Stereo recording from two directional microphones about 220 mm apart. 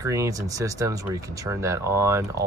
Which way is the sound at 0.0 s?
15° right (ahead or behind).